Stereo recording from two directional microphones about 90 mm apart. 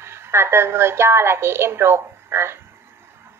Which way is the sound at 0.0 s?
30° right (ahead or behind).